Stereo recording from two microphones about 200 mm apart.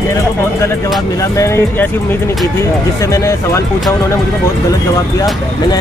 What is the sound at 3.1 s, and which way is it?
Speech, 15° left (ahead or behind).